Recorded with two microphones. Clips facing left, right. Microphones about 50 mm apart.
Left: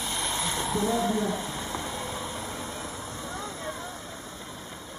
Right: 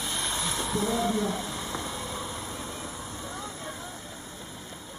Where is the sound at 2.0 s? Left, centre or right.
Left.